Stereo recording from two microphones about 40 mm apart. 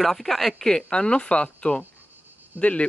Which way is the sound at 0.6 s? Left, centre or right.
Centre.